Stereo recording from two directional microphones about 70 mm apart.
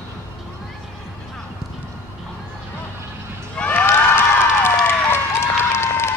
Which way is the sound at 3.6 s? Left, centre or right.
Left.